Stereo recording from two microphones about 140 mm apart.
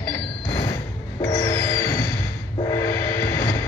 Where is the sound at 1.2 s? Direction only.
20° left (ahead or behind).